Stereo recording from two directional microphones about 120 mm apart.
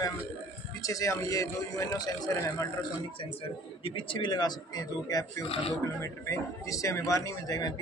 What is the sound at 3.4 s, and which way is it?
A man's voice, 50° left (ahead or behind).